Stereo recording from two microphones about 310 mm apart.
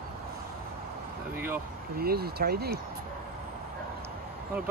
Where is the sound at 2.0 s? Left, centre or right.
Right.